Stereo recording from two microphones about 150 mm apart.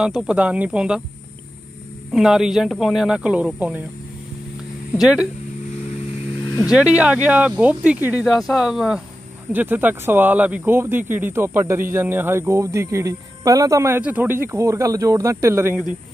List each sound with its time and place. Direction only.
0.0 s speech: 5° right (ahead or behind)
2.1 s speech: centre (ahead or behind)
4.9 s speech: 5° right (ahead or behind)
6.7 s speech: 10° right (ahead or behind)